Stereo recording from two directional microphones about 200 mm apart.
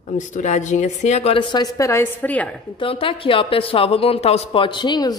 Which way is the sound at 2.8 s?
25° left (ahead or behind).